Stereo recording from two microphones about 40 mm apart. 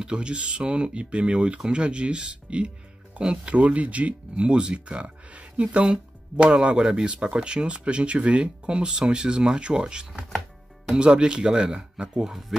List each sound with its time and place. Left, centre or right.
0.0 s speech: right
4.4 s speech: right
12.3 s speech: centre